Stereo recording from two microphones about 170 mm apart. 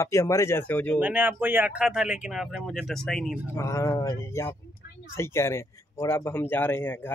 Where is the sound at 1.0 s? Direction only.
10° right (ahead or behind).